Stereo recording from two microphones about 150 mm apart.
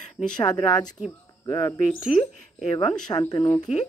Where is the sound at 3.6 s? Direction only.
50° left (ahead or behind).